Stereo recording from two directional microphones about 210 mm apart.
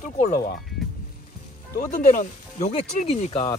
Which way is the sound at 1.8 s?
35° left (ahead or behind).